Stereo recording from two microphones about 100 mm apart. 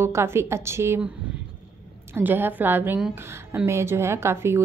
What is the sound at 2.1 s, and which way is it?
A woman's voice, 20° right (ahead or behind).